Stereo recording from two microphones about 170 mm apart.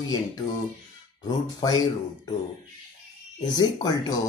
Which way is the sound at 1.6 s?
20° left (ahead or behind).